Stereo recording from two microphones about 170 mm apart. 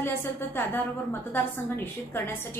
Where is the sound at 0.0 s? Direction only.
15° left (ahead or behind).